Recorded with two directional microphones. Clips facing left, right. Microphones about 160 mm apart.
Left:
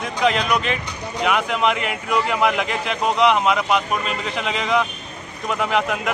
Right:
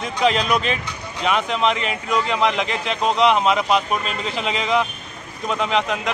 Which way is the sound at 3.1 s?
Centre (ahead or behind).